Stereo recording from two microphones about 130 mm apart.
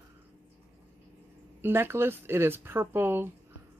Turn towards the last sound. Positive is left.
turn(degrees=-15)  # may be behind; listen again after turning